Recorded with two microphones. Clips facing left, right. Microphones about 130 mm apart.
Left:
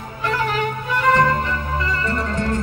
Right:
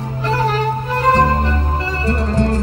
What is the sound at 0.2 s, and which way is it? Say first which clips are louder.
Music: right 3 dB; 35° right (ahead or behind).